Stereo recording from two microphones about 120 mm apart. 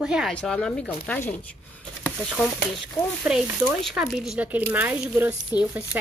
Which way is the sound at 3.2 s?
10° right (ahead or behind).